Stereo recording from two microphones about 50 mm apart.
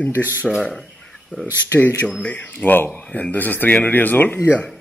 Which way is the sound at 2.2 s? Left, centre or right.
Left.